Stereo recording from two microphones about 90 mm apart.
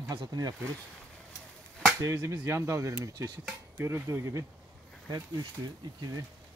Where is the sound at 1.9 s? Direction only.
35° right (ahead or behind).